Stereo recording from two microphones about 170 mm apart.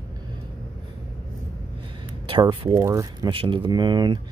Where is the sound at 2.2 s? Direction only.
30° right (ahead or behind).